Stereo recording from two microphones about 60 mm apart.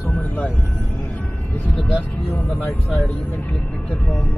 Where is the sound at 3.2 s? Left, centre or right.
Left.